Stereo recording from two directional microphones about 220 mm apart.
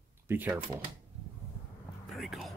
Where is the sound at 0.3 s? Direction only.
10° right (ahead or behind).